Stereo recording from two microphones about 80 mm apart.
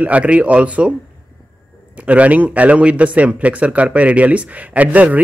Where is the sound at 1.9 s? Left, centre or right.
Centre.